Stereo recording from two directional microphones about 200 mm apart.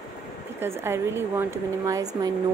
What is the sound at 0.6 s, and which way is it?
Speech, 10° right (ahead or behind).